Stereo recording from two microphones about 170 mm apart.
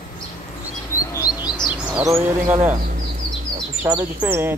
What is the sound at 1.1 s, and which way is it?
Chirp, 20° left (ahead or behind).